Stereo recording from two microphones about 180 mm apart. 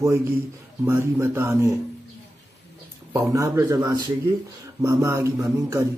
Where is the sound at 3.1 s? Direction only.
20° right (ahead or behind).